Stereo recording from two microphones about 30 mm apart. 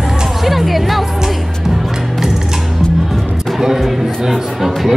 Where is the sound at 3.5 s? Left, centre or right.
Centre.